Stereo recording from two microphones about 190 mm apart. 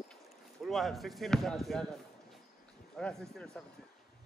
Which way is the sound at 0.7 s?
Centre (ahead or behind).